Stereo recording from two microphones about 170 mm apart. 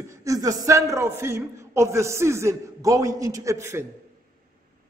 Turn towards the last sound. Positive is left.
turn(degrees=-15)  # may be behind; listen again after turning